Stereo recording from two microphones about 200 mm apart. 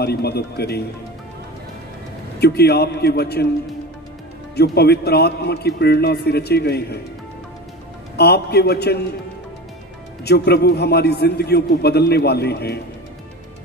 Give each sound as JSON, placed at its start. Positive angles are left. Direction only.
{"t": 0.0, "sound": "a man's voice", "side_deg": 55}
{"t": 2.3, "sound": "a man's voice", "side_deg": 55}
{"t": 4.6, "sound": "a man's voice", "side_deg": 55}
{"t": 8.2, "sound": "a man's voice", "side_deg": 55}
{"t": 10.2, "sound": "a man's voice", "side_deg": 55}